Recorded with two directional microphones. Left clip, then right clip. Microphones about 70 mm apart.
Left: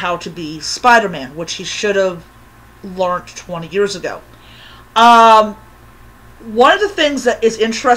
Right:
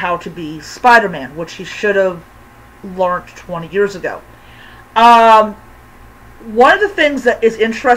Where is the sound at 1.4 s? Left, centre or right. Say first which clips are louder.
Right 1 dB; left.